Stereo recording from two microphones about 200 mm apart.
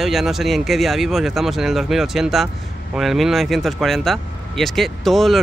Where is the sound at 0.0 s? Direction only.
Centre (ahead or behind).